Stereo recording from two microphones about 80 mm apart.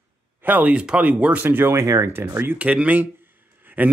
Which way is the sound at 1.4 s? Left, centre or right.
Right.